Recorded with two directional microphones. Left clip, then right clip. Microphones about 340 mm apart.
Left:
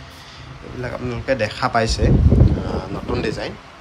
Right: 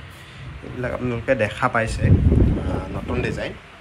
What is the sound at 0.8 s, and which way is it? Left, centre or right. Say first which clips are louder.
Speech: right 1 dB; centre.